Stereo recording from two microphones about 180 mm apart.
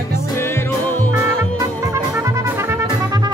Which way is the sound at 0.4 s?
15° left (ahead or behind).